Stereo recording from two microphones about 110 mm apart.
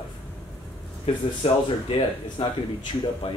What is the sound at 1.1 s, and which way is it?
Speech, 70° left (ahead or behind).